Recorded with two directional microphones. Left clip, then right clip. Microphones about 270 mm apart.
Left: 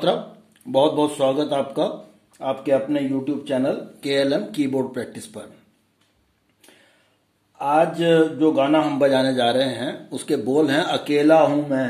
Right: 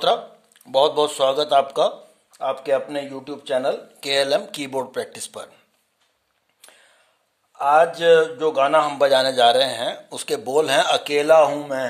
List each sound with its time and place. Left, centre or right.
0.7 s speech: right
7.5 s speech: right